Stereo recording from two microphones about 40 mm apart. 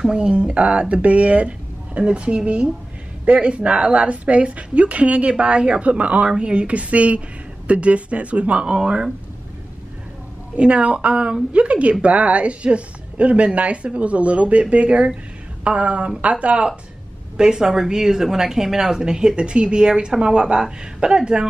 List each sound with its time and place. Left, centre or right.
0.0 s a woman's voice: right
8.6 s a woman's voice: right
10.5 s a woman's voice: right
17.4 s speech: centre